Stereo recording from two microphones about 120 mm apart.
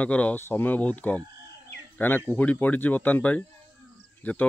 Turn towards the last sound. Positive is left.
turn(degrees=15)  # may be behind; listen again after turning